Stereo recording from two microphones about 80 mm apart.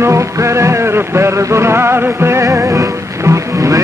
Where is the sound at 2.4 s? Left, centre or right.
Right.